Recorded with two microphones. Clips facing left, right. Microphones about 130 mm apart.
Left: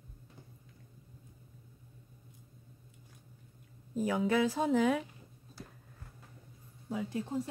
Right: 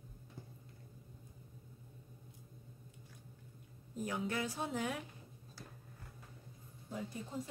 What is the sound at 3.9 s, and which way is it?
Speech, 90° left.